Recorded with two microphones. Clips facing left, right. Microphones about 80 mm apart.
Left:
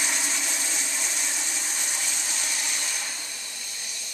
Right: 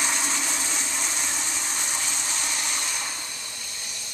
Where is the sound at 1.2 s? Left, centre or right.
Right.